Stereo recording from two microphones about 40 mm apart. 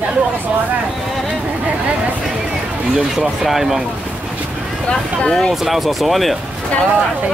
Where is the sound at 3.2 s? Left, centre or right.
Centre.